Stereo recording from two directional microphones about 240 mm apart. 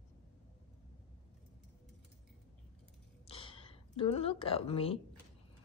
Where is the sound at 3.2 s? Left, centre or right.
Left.